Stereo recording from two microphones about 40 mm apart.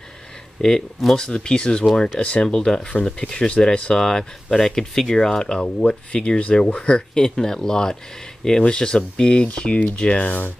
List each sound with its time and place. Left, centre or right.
0.6 s speech: centre
7.2 s speech: centre; by 10.3 s left